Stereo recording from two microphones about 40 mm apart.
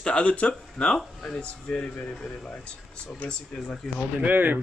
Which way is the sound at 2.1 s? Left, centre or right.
Centre.